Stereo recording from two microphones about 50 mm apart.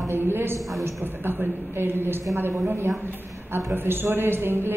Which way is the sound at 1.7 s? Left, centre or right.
Right.